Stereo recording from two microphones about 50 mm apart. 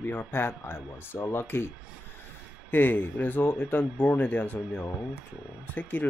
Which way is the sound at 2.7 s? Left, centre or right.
Left.